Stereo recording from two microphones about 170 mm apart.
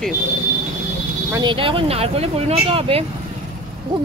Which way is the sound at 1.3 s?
25° right (ahead or behind).